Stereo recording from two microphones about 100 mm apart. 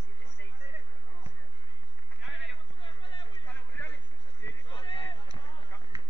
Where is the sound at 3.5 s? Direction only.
15° left (ahead or behind).